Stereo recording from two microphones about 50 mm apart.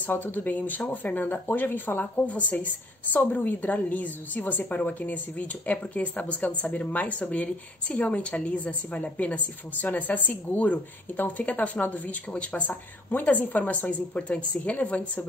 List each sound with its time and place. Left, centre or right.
0.0 s speech: left
2.2 s speech: left